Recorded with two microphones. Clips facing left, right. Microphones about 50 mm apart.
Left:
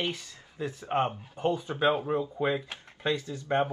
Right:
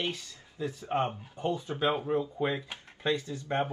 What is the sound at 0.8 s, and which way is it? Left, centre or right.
Speech, left.